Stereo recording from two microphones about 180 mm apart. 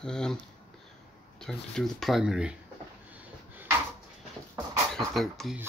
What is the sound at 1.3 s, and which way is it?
Speech, 5° left (ahead or behind).